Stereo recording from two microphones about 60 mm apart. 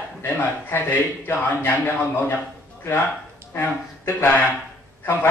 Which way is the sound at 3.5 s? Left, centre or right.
Left.